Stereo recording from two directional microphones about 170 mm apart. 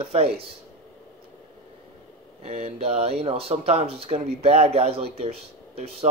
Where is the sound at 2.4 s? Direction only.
35° right (ahead or behind).